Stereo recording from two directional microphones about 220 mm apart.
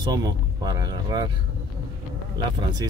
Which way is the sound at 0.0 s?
15° right (ahead or behind).